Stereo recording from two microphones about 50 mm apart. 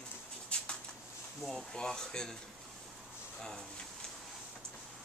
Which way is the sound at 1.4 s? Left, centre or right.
Centre.